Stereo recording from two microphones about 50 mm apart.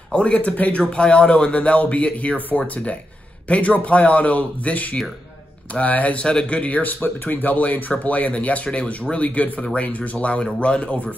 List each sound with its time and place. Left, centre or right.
0.1 s speech: left